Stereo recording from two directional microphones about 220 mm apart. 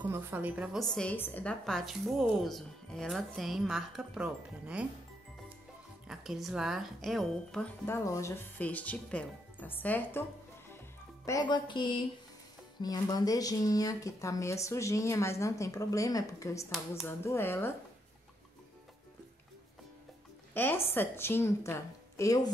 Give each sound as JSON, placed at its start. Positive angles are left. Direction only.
{"t": 0.0, "sound": "a woman's voice", "side_deg": -10}
{"t": 6.0, "sound": "speech", "side_deg": 0}
{"t": 11.2, "sound": "speech", "side_deg": 15}
{"t": 20.5, "sound": "speech", "side_deg": 10}